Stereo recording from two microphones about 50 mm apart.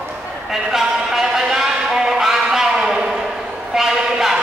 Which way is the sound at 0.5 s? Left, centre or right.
Centre.